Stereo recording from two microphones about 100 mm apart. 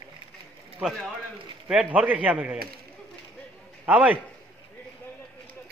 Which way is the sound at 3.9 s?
15° right (ahead or behind).